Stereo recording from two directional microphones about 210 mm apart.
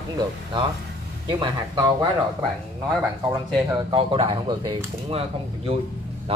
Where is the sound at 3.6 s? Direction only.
25° right (ahead or behind).